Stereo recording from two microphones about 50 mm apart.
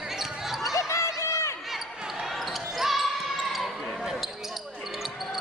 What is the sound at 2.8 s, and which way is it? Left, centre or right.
Basketball bounce, centre.